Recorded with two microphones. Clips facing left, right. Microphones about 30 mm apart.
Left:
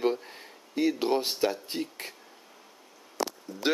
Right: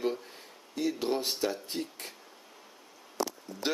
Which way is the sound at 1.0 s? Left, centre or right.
Left.